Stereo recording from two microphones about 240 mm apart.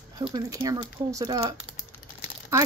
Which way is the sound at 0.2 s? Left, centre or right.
Centre.